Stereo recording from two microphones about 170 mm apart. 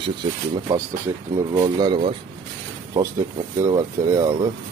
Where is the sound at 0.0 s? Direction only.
30° right (ahead or behind).